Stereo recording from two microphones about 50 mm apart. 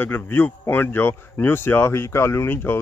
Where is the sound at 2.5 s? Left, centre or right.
Left.